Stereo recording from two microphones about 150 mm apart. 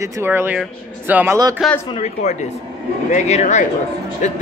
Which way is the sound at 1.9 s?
45° left (ahead or behind).